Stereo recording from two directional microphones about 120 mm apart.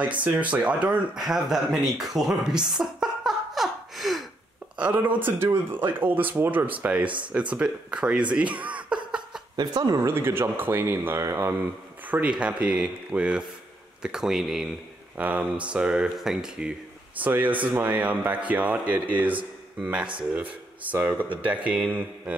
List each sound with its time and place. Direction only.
0.0 s speech: 10° right (ahead or behind)
4.7 s speech: 10° right (ahead or behind)
9.6 s speech: 35° right (ahead or behind)
10.0 s speech: 20° right (ahead or behind)
12.1 s speech: 10° right (ahead or behind)